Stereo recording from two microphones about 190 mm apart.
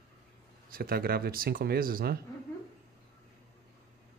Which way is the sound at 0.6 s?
50° right (ahead or behind).